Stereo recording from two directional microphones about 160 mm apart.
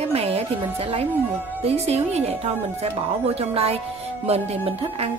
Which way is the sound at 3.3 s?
40° right (ahead or behind).